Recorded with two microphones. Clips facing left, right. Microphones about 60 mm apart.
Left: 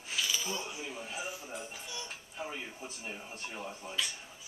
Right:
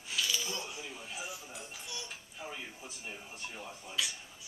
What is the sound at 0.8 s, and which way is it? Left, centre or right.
Speech, centre.